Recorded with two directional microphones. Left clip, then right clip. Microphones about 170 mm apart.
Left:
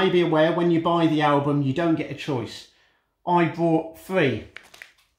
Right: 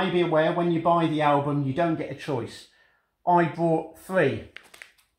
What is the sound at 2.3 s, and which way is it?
Speech, 15° left (ahead or behind).